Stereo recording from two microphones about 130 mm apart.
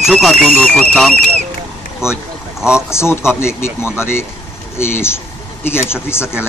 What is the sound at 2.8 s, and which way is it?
Speech, 20° left (ahead or behind).